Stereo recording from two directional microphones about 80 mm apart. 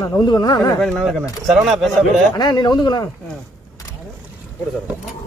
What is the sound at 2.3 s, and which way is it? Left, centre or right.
Speech, left.